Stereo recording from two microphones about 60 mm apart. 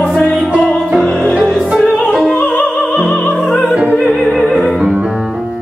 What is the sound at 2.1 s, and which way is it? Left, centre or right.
Opera, centre.